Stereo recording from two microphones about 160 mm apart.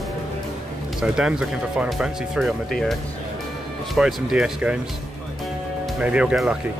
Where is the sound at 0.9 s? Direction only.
5° right (ahead or behind).